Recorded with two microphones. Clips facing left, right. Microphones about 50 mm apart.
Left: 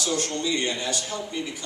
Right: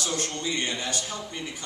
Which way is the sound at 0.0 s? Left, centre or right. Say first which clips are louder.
Left 3 dB; right.